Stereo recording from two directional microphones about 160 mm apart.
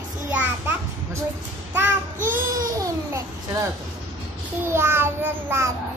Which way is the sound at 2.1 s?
55° right (ahead or behind).